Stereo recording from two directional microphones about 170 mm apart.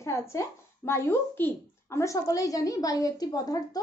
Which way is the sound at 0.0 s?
15° left (ahead or behind).